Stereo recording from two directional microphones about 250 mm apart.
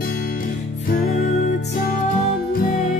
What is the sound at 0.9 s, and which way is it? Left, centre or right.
Music, left.